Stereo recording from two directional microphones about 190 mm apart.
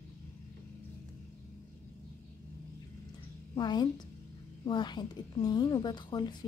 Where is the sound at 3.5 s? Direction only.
20° left (ahead or behind).